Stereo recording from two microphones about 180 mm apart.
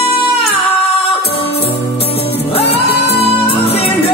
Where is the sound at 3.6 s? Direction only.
30° left (ahead or behind).